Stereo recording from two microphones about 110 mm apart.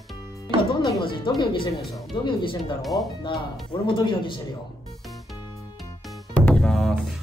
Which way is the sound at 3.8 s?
50° left (ahead or behind).